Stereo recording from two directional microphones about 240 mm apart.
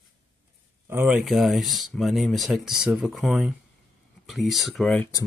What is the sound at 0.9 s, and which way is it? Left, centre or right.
Speech, centre.